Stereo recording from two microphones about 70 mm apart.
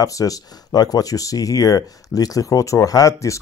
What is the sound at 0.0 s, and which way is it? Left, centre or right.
Speech, left.